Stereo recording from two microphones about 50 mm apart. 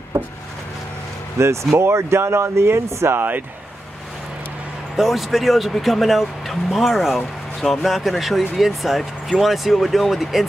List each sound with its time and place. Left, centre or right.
1.4 s speech: right
4.9 s speech: centre